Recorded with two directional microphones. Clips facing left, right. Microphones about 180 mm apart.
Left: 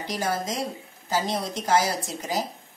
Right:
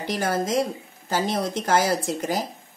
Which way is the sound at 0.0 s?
55° right (ahead or behind).